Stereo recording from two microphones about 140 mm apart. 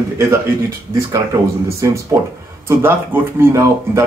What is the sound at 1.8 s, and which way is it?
Speech, 25° right (ahead or behind).